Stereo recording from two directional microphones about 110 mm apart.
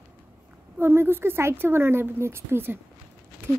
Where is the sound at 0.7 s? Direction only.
20° right (ahead or behind).